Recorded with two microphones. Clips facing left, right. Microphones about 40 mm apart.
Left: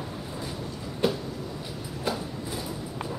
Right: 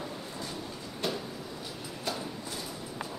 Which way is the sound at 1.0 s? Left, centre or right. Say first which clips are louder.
Left 7 dB; centre.